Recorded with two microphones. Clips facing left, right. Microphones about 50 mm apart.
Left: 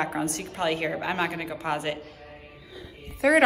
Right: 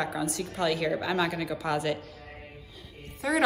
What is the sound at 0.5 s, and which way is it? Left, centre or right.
A woman's voice, left.